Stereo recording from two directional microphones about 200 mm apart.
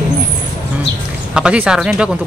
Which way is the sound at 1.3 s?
5° right (ahead or behind).